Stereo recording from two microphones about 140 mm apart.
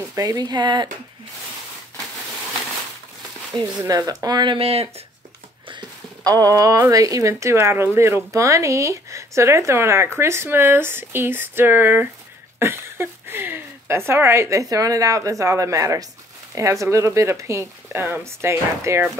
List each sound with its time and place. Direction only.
0.1 s speech: 25° right (ahead or behind)
3.8 s speech: 25° right (ahead or behind)
4.6 s speech: 45° right (ahead or behind)
5.7 s speech: 30° right (ahead or behind)